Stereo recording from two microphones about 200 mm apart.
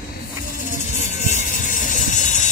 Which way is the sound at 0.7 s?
35° left (ahead or behind).